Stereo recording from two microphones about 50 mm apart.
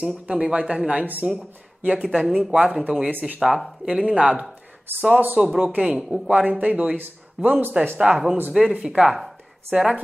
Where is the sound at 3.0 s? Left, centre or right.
Right.